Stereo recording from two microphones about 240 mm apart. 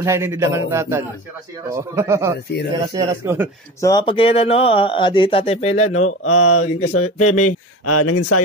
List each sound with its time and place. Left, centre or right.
0.0 s a man's voice: centre
3.8 s speech: centre
5.8 s speech: left